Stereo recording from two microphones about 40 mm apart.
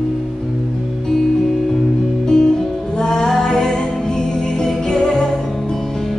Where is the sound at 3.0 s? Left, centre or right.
Centre.